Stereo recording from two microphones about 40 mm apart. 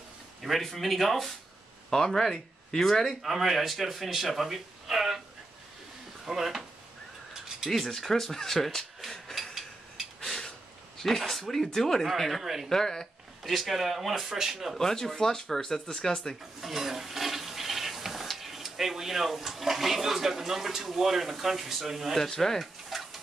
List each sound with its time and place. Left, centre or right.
0.4 s speech: centre
3.2 s a man's voice: centre
6.2 s speech: centre
8.1 s speech: centre
10.2 s a sound: centre
11.0 s speech: centre
12.6 s speech: centre
13.4 s speech: centre
14.7 s speech: centre
16.6 s toilet flush: centre
22.1 s speech: centre
22.8 s stir: centre